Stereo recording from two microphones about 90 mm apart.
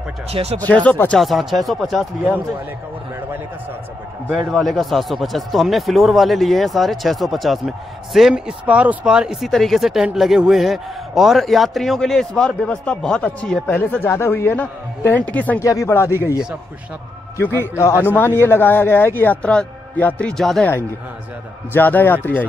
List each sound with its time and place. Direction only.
0.4 s speech: 90° right
0.8 s speech: 15° left (ahead or behind)
1.1 s speech: centre (ahead or behind)
4.5 s speech: centre (ahead or behind)
13.7 s speech: 20° left (ahead or behind)
15.6 s speech: 35° left (ahead or behind)
17.4 s speech: 30° left (ahead or behind); by 20.4 s 15° left (ahead or behind)
21.7 s speech: 20° left (ahead or behind)